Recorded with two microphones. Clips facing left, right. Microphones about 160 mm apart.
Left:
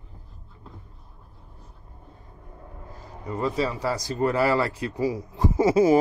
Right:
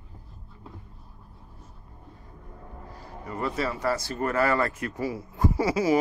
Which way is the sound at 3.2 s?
20° left (ahead or behind).